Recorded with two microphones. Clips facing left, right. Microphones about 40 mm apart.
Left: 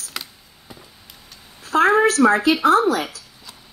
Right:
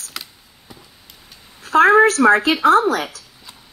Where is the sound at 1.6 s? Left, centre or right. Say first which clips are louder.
Right 4 dB; right.